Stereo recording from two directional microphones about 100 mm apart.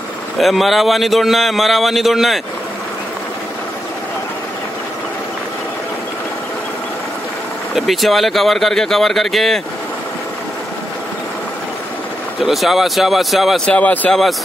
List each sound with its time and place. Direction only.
0.4 s speech: centre (ahead or behind)
7.7 s speech: centre (ahead or behind)
12.4 s speech: centre (ahead or behind)
13.7 s speech: 15° left (ahead or behind)